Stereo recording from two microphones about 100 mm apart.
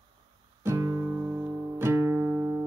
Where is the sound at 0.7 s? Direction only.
25° right (ahead or behind).